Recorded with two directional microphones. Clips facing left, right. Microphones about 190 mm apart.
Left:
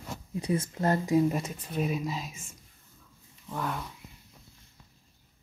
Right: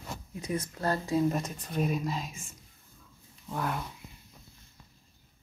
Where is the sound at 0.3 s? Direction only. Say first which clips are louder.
Left 4 dB; 30° left (ahead or behind).